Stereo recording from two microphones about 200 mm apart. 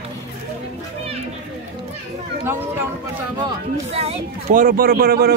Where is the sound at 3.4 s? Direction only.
30° right (ahead or behind); by 5.3 s 50° right (ahead or behind).